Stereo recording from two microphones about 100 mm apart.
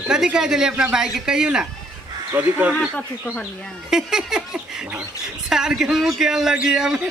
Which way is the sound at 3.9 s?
5° right (ahead or behind).